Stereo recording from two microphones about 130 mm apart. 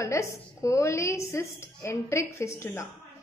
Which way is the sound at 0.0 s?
25° left (ahead or behind).